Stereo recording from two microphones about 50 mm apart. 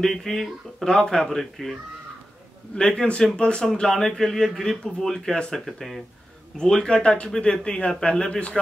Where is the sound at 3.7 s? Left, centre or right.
Centre.